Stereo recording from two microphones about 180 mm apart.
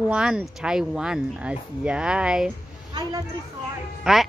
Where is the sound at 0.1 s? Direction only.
5° right (ahead or behind).